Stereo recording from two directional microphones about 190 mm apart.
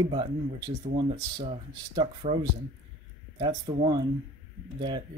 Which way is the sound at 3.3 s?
20° right (ahead or behind).